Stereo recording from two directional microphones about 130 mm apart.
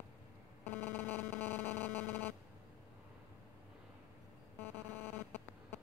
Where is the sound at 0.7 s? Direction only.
15° left (ahead or behind).